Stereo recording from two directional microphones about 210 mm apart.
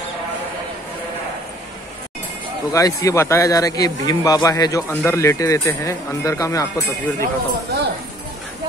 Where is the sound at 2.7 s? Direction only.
15° left (ahead or behind).